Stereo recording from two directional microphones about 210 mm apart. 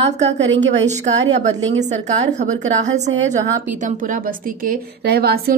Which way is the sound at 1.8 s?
35° right (ahead or behind).